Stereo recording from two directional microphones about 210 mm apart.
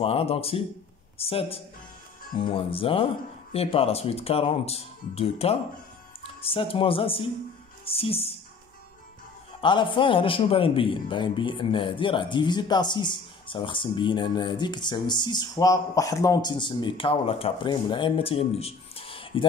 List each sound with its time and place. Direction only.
0.0 s a man's voice: 25° left (ahead or behind)
9.6 s a man's voice: 25° left (ahead or behind)